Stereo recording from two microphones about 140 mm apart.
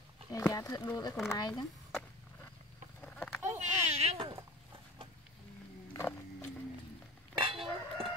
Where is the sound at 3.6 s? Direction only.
50° right (ahead or behind).